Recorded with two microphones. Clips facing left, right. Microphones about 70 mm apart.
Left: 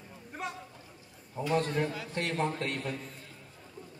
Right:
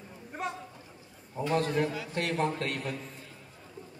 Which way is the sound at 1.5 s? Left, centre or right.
Centre.